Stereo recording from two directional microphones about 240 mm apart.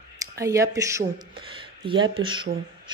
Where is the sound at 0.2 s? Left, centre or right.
Centre.